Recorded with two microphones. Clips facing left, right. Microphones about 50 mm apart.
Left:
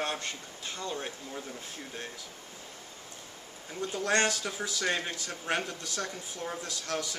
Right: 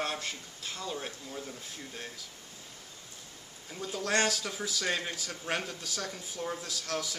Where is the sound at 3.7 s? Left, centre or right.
Centre.